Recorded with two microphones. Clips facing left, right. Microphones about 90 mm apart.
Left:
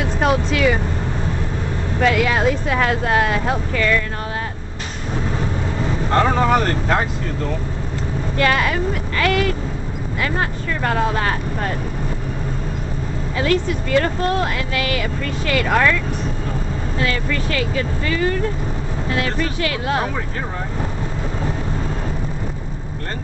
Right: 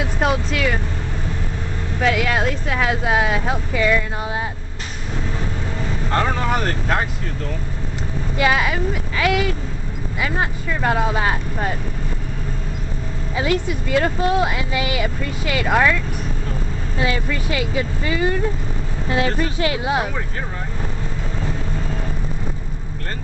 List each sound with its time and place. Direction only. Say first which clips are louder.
0.0 s speech: left 2 dB; centre (ahead or behind)
2.0 s speech: left 2 dB; centre (ahead or behind)
6.5 s speech: left 4 dB; centre (ahead or behind)
8.4 s speech: even; 5° right (ahead or behind)
13.4 s speech: left 2 dB; 15° right (ahead or behind)
17.0 s speech: even; 15° right (ahead or behind)